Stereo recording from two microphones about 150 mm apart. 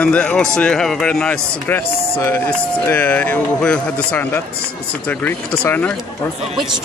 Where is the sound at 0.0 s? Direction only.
10° left (ahead or behind).